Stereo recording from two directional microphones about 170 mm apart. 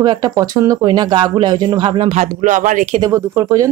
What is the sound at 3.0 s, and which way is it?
Speech, 20° right (ahead or behind).